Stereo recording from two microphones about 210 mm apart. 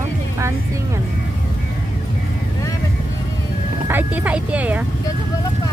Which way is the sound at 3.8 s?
10° right (ahead or behind).